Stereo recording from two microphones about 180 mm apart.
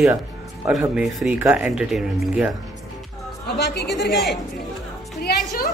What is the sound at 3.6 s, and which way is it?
Speech, 65° left (ahead or behind).